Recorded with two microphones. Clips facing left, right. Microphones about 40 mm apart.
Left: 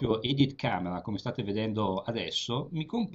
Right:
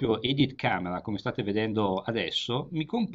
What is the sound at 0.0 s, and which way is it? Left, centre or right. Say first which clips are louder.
Speech: right 1 dB; right.